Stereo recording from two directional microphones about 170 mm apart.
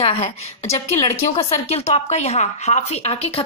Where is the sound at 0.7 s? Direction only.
20° left (ahead or behind).